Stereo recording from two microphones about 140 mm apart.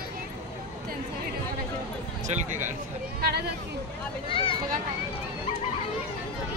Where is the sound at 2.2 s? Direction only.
60° right (ahead or behind).